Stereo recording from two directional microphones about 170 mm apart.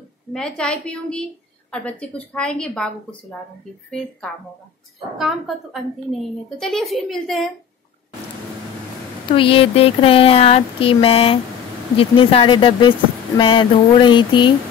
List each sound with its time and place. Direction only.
0.3 s a woman's voice: 5° left (ahead or behind)
9.3 s speech: 30° left (ahead or behind)
13.4 s a sound: 30° left (ahead or behind)